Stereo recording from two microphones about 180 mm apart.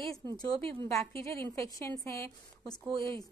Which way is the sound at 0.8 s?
15° left (ahead or behind).